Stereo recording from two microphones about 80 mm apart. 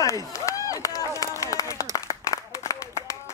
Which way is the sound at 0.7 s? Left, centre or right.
Left.